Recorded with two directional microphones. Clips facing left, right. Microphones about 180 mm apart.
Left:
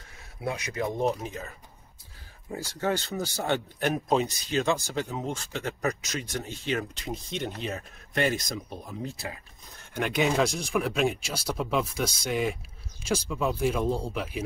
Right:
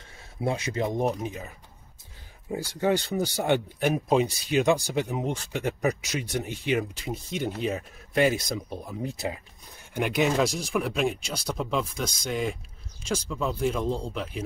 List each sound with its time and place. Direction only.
0.4 s speech: 25° right (ahead or behind)
2.5 s speech: 15° right (ahead or behind); by 14.4 s 5° left (ahead or behind)